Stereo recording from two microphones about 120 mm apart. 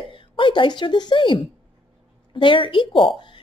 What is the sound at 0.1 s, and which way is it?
A woman's voice, 45° left (ahead or behind).